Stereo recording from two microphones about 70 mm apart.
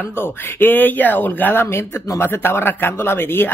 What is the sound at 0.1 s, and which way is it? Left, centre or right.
Speech, left.